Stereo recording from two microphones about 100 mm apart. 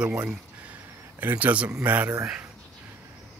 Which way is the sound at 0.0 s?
10° right (ahead or behind).